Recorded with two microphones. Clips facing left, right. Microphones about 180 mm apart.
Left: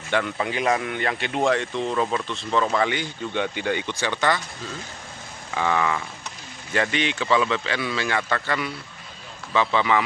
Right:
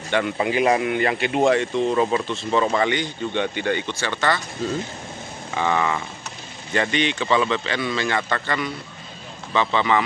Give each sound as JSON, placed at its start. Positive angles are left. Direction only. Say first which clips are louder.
{"t": 0.1, "sound": "a man's voice", "louder": "right 3 dB", "side_deg": -5}
{"t": 5.5, "sound": "a man's voice", "louder": "right 1 dB", "side_deg": 0}